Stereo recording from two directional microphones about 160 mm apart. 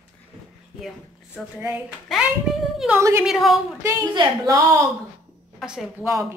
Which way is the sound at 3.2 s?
Centre (ahead or behind).